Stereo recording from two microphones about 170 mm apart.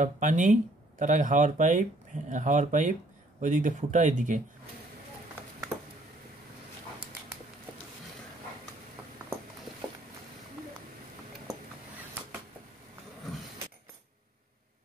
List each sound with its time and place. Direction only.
0.0 s speech: 50° right (ahead or behind)